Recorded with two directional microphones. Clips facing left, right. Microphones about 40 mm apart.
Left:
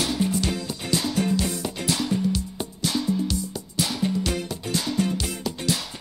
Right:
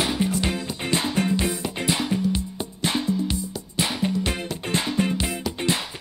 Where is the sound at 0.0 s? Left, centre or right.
Right.